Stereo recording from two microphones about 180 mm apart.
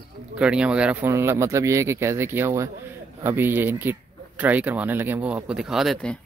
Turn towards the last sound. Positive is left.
turn(degrees=5)  # may be behind; listen again after turning